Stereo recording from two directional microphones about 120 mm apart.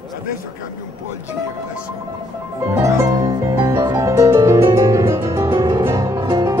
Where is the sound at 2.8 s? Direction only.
35° right (ahead or behind).